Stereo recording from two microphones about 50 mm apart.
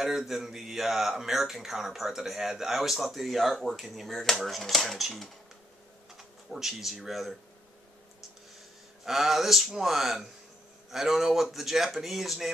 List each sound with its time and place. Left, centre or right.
0.0 s speech: centre
9.0 s speech: centre